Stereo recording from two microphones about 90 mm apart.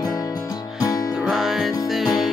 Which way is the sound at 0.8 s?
40° left (ahead or behind).